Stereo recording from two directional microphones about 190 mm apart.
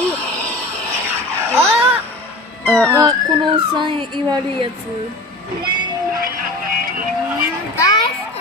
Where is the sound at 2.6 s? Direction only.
5° left (ahead or behind).